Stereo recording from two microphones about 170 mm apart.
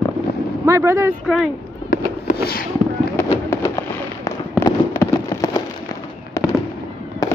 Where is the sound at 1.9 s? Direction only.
60° left (ahead or behind).